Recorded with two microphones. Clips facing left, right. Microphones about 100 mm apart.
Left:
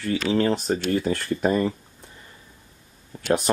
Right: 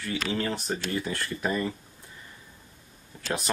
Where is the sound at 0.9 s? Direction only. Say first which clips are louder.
Left 7 dB; 45° left (ahead or behind).